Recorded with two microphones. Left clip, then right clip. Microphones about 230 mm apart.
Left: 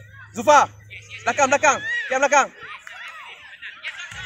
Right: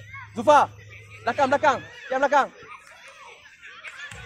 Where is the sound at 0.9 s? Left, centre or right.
Right.